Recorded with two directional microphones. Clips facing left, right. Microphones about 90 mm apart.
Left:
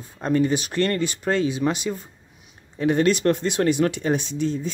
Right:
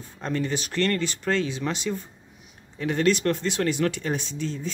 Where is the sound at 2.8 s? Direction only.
25° left (ahead or behind).